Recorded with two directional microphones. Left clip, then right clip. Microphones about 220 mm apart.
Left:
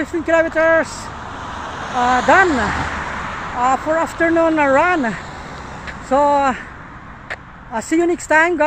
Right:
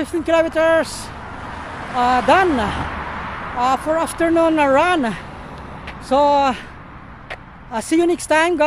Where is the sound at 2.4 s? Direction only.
50° left (ahead or behind).